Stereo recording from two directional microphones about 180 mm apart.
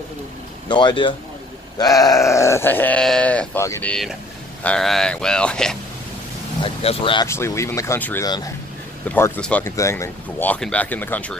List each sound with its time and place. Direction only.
0.7 s speech: 25° left (ahead or behind)
3.9 s speech: centre (ahead or behind)
6.6 s speech: 30° left (ahead or behind)
7.2 s speech: 15° left (ahead or behind)